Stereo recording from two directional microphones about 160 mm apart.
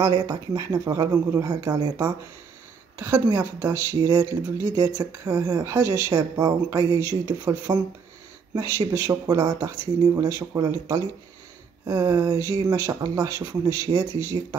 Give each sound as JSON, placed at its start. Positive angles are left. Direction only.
{"t": 0.0, "sound": "speech", "side_deg": -20}